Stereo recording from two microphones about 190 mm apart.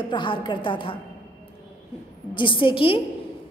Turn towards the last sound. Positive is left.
turn(degrees=30)  # may be behind; listen again after turning